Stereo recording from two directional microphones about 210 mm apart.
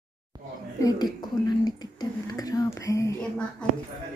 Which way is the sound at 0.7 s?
20° left (ahead or behind).